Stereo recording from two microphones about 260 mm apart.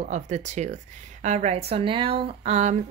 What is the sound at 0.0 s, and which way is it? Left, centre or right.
Speech, right.